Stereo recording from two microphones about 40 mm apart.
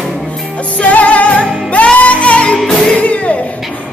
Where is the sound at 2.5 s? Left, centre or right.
Centre.